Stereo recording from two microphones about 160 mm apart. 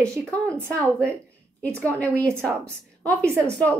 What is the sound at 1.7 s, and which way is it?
A woman's voice, 15° right (ahead or behind).